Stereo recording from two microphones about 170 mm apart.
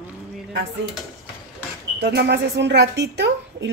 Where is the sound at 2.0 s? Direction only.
75° right (ahead or behind); by 3.7 s 90° right.